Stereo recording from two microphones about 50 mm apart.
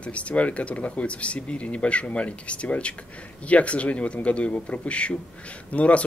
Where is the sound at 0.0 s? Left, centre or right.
Left.